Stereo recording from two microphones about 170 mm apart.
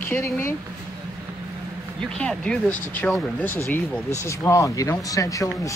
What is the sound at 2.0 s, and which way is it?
Speech, 5° left (ahead or behind).